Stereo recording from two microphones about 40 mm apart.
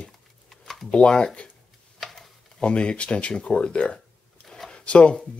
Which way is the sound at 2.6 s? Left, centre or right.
Left.